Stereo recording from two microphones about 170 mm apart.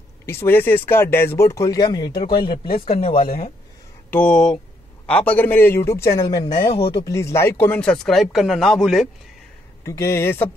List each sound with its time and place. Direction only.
0.3 s a man's voice: 15° left (ahead or behind); by 3.5 s 35° left (ahead or behind)
4.1 s a man's voice: 5° left (ahead or behind); by 7.2 s 30° left (ahead or behind)
7.2 s speech: 15° left (ahead or behind); by 9.1 s centre (ahead or behind)
9.8 s a man's voice: 15° left (ahead or behind)